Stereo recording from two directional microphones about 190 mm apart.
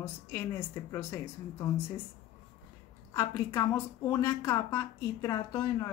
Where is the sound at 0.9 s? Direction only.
15° left (ahead or behind).